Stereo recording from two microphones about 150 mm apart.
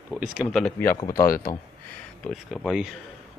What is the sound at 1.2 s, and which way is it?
Speech, 75° left (ahead or behind).